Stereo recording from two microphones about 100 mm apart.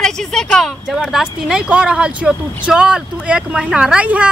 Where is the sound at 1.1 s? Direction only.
5° right (ahead or behind).